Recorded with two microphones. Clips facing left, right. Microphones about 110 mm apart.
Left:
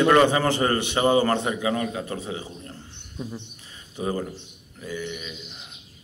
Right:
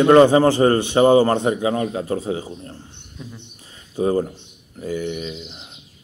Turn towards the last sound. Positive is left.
turn(degrees=-35)  # may be behind; listen again after turning